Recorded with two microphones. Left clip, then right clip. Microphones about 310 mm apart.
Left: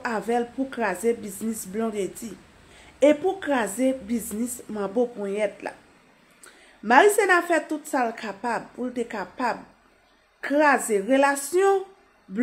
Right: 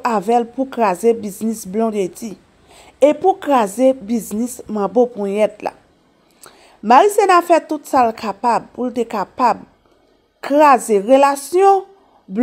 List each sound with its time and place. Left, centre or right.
0.0 s speech: right
6.8 s speech: right